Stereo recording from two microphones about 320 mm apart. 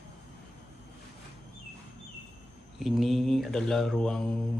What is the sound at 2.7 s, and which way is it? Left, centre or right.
Mantra, centre.